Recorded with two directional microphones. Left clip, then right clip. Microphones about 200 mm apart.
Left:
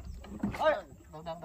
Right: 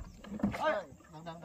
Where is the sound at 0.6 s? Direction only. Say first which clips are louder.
Left 6 dB; 15° left (ahead or behind).